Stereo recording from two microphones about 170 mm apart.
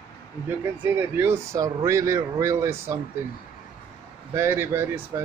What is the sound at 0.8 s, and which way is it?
Speech, 15° right (ahead or behind).